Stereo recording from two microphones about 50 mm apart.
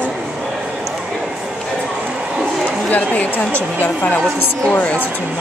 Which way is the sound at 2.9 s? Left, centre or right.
Left.